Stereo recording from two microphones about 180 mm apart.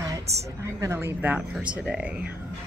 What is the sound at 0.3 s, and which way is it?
Speech, 35° right (ahead or behind).